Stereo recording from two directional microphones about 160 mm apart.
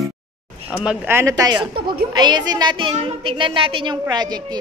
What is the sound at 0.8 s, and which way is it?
A woman's voice, 15° right (ahead or behind).